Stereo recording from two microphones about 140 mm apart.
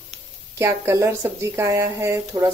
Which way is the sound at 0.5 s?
20° right (ahead or behind).